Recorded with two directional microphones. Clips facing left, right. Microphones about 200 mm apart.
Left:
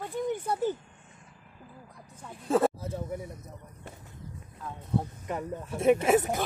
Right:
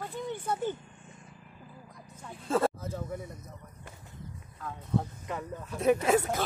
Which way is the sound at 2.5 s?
15° left (ahead or behind).